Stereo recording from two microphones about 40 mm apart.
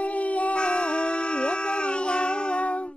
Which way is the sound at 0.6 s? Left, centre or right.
Left.